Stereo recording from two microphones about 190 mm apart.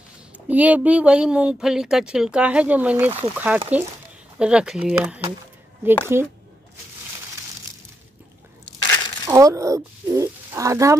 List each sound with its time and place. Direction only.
0.5 s speech: 10° right (ahead or behind)
9.2 s speech: 15° right (ahead or behind)